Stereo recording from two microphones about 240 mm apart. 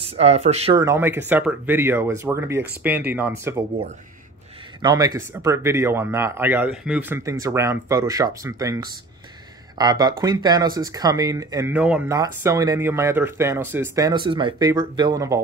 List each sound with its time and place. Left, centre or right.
0.0 s speech: right
0.8 s speech: centre
4.8 s speech: centre